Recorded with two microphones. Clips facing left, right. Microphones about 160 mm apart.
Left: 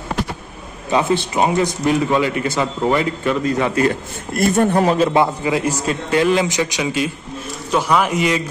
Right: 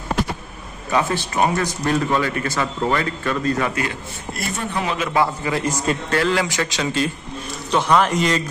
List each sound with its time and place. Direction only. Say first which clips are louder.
0.9 s a man's voice: left 3 dB; 20° left (ahead or behind)
3.7 s a man's voice: left 8 dB; 45° left (ahead or behind)
5.2 s a man's voice: left 3 dB; 15° left (ahead or behind)